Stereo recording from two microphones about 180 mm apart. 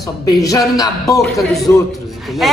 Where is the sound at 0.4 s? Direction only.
20° left (ahead or behind).